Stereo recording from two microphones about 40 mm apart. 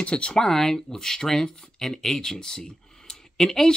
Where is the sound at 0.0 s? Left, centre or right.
Left.